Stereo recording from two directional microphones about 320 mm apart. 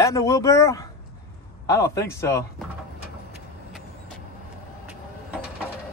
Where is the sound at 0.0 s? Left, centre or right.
Centre.